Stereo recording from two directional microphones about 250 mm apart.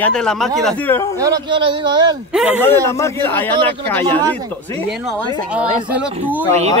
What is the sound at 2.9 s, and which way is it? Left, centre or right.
Speech, centre.